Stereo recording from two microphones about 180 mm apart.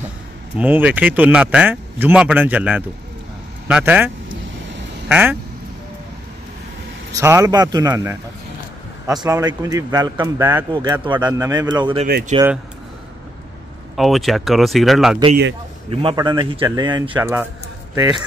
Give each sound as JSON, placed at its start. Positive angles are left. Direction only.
{"t": 0.6, "sound": "speech", "side_deg": -10}
{"t": 7.2, "sound": "speech", "side_deg": -15}
{"t": 9.2, "sound": "speech", "side_deg": -20}
{"t": 11.1, "sound": "speech", "side_deg": -15}
{"t": 13.9, "sound": "speech", "side_deg": 0}
{"t": 15.9, "sound": "speech", "side_deg": -30}
{"t": 17.1, "sound": "speech", "side_deg": -10}